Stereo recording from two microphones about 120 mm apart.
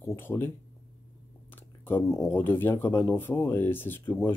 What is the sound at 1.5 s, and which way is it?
Speech, 20° left (ahead or behind).